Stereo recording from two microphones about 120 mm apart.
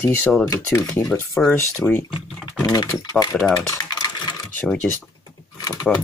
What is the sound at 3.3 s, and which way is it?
Speech, centre (ahead or behind).